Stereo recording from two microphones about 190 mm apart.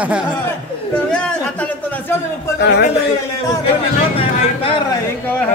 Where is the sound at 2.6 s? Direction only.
60° left (ahead or behind).